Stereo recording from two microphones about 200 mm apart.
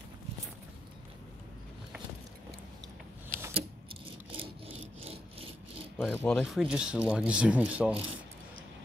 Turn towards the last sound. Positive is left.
turn(degrees=-5)  # may be behind; listen again after turning